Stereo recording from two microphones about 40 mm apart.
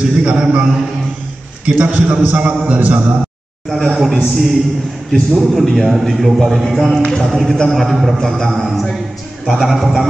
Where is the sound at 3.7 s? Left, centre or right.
Centre.